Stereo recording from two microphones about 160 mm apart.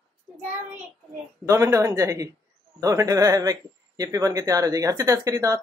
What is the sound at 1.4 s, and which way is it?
A man's voice, 20° right (ahead or behind).